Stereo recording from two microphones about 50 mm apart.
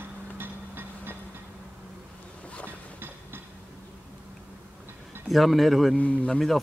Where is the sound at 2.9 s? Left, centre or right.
Right.